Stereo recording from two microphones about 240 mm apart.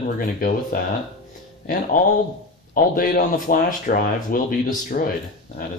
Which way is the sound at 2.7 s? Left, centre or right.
Left.